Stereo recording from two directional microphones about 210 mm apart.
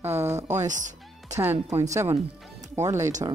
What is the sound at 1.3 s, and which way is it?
A woman's voice, 15° right (ahead or behind).